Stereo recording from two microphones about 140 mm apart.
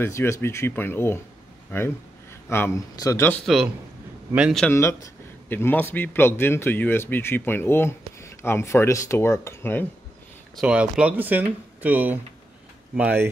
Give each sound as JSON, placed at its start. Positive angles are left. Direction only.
{"t": 0.0, "sound": "a man's voice", "side_deg": 20}
{"t": 2.5, "sound": "speech", "side_deg": 20}
{"t": 3.4, "sound": "a man's voice", "side_deg": 0}
{"t": 4.6, "sound": "a man's voice", "side_deg": 20}
{"t": 10.5, "sound": "speech", "side_deg": -5}